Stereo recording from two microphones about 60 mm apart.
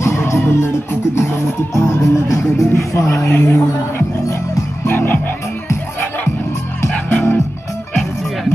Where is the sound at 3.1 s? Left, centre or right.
Left.